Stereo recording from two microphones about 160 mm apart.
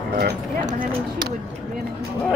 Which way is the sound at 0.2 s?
60° right (ahead or behind).